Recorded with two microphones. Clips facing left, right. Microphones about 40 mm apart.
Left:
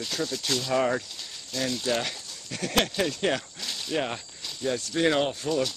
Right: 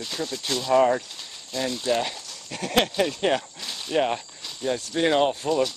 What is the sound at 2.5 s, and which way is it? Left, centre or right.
Speech, right.